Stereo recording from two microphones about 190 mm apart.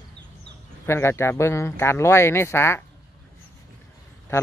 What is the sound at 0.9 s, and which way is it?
A man's voice, 15° left (ahead or behind).